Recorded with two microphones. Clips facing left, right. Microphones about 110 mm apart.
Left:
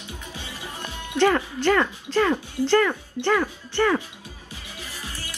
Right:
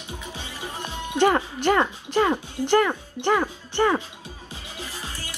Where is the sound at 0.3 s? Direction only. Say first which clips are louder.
Right 2 dB; 20° right (ahead or behind).